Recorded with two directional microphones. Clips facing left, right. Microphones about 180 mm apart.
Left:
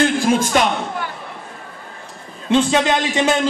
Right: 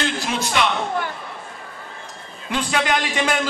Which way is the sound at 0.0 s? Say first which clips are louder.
Left 8 dB; 50° left (ahead or behind).